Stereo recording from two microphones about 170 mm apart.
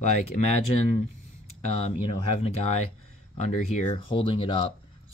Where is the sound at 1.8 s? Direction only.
35° left (ahead or behind).